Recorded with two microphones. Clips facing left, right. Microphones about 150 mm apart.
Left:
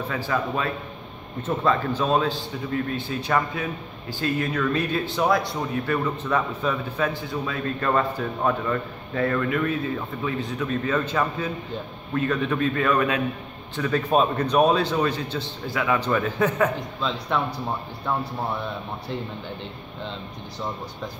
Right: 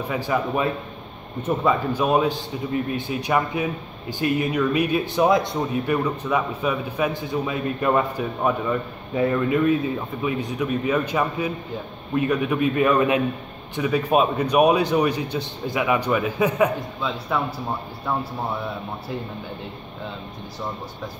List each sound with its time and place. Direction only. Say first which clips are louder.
0.1 s a man's voice: right 4 dB; 15° right (ahead or behind)
13.7 s a man's voice: right 2 dB; 10° right (ahead or behind)
19.6 s speech: right 1 dB; 5° right (ahead or behind)